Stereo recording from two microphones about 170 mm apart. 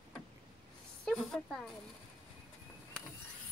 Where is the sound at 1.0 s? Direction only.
Centre (ahead or behind).